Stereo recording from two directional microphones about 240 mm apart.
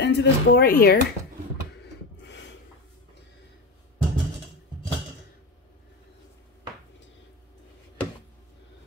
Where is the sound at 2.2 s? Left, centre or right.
Left.